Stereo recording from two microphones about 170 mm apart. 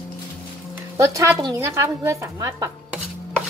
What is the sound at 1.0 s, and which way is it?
A woman's voice, 20° right (ahead or behind).